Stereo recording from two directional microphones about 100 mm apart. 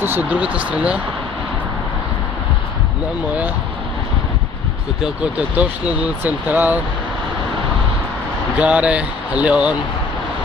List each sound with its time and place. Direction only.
0.0 s speech: 15° right (ahead or behind)
5.0 s speech: 10° right (ahead or behind)
8.5 s speech: 10° right (ahead or behind)